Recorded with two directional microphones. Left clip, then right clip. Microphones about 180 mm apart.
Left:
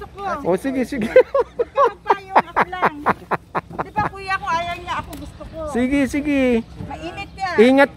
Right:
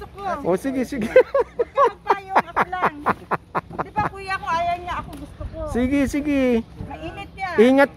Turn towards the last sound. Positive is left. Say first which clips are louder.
# left 2 dB
turn(degrees=0)  # may be behind; listen again after turning